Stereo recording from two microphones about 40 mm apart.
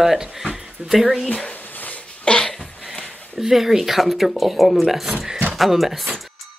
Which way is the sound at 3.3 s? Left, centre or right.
Centre.